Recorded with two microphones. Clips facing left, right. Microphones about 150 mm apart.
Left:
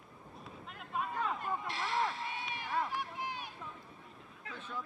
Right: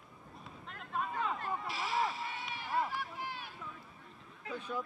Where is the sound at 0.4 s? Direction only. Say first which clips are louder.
Even; 5° left (ahead or behind).